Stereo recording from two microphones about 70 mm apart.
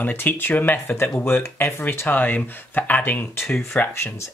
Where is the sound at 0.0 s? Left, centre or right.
Left.